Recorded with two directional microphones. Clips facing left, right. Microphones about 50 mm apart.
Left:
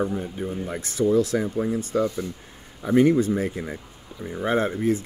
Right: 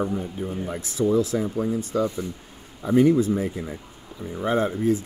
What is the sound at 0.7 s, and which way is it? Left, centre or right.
Speech, left.